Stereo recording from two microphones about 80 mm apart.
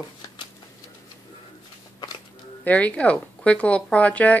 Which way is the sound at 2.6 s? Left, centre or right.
Centre.